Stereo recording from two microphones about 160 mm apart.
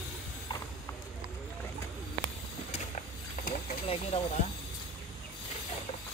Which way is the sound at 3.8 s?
40° left (ahead or behind).